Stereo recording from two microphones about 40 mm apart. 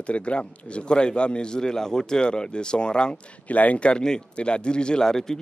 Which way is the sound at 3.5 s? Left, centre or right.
Left.